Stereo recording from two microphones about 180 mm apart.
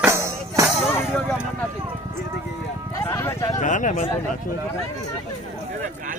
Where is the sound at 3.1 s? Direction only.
15° left (ahead or behind).